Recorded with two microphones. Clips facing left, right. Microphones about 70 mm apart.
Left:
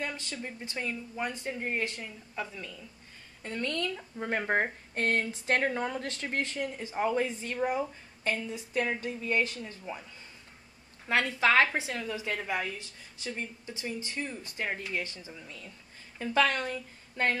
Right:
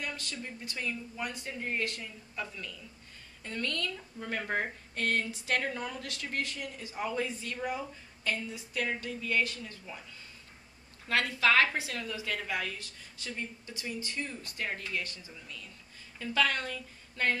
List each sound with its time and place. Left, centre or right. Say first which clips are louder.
0.0 s a woman's voice: left 3 dB; left
11.1 s a woman's voice: left 2 dB; left